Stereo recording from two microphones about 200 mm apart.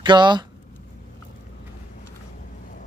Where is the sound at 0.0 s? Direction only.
20° right (ahead or behind).